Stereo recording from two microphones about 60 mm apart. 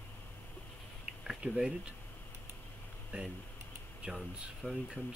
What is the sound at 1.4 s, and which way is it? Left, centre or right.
Speech, centre.